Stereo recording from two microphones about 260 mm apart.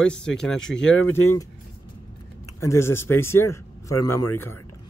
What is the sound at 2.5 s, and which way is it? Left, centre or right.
Speech, centre.